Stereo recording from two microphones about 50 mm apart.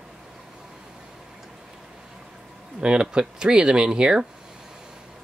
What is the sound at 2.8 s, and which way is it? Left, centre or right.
Speech, centre.